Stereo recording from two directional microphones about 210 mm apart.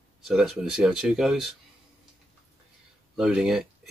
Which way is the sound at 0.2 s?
Centre (ahead or behind).